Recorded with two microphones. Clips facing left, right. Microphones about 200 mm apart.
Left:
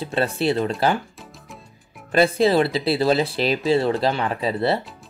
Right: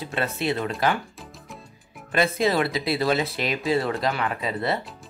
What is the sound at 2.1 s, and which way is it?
Speech, 30° left (ahead or behind).